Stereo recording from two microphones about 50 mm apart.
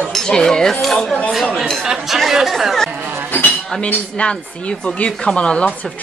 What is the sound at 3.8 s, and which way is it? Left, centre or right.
Dishes, left.